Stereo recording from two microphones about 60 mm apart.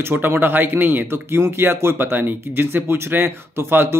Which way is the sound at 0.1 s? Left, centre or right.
Right.